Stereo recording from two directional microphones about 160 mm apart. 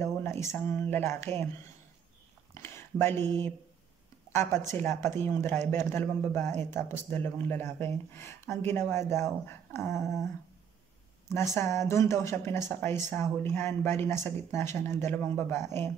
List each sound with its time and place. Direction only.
0.0 s speech: 15° left (ahead or behind)
2.5 s speech: 15° left (ahead or behind)
11.5 s speech: 15° left (ahead or behind)